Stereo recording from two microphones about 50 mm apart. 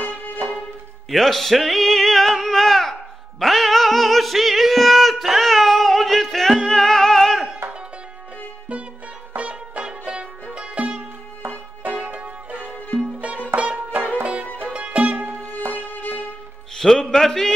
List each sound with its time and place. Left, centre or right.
0.0 s music: left
1.1 s music: centre
9.4 s music: right
15.7 s music: left
16.7 s a man's voice: centre